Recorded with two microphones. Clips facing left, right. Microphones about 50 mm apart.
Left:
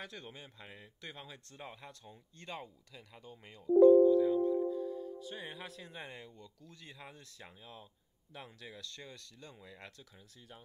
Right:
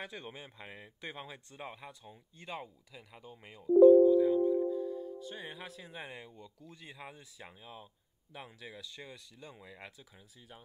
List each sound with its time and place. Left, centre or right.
0.0 s speech: centre